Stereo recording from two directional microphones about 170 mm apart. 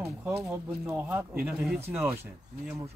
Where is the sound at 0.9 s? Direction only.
10° right (ahead or behind).